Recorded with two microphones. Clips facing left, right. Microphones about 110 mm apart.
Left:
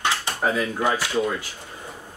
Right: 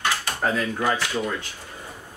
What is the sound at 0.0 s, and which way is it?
Speech, 15° left (ahead or behind).